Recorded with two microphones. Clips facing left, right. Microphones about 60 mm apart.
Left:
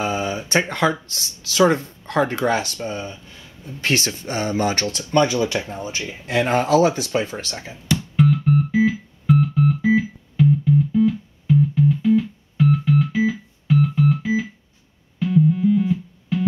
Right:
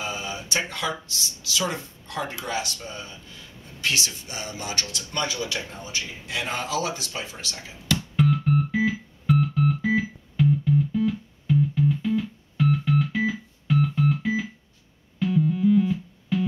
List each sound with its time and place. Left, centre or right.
0.0 s speech: left
8.2 s music: centre